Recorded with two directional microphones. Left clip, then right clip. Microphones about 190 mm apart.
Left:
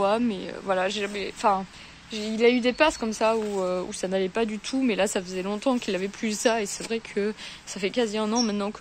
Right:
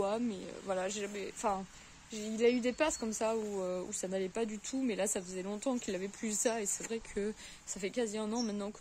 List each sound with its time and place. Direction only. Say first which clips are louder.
0.0 s speech: left 11 dB; centre (ahead or behind)